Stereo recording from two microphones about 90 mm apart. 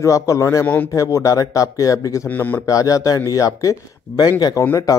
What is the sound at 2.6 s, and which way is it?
A man's voice, 40° left (ahead or behind).